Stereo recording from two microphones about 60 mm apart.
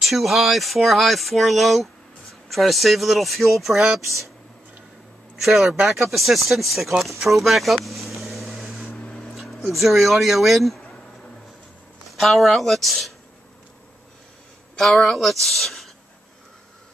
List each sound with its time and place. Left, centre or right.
0.0 s speech: centre
5.4 s speech: centre
7.0 s vehicle: centre
8.9 s vehicle: left
9.3 s speech: centre
10.8 s a sound: centre
12.1 s speech: centre
14.8 s speech: centre